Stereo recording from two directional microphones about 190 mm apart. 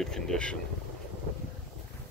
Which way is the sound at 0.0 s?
5° left (ahead or behind).